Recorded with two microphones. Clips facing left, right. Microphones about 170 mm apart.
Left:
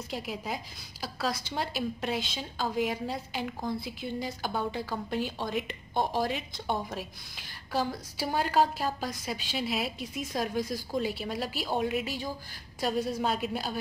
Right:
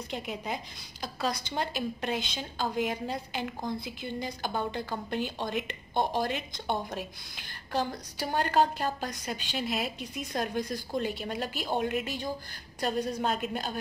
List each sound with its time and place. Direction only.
0.1 s a woman's voice: centre (ahead or behind)